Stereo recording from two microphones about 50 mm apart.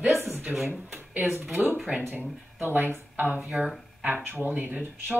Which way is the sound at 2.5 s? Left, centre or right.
Right.